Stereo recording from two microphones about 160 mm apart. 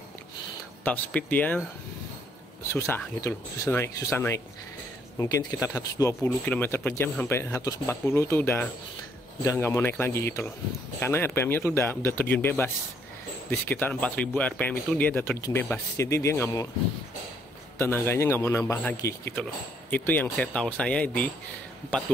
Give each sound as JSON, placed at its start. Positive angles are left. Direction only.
{"t": 0.8, "sound": "speech", "side_deg": 10}
{"t": 2.7, "sound": "speech", "side_deg": 15}
{"t": 17.7, "sound": "speech", "side_deg": 15}